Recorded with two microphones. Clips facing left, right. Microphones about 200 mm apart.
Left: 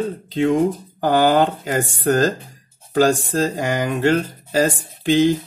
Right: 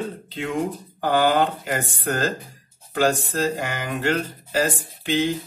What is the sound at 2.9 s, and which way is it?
Speech, 40° left (ahead or behind).